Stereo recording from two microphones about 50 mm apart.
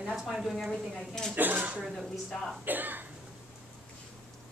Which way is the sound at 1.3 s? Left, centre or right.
Right.